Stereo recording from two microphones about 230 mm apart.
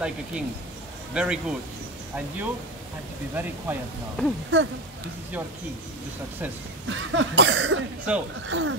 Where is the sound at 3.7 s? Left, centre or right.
Centre.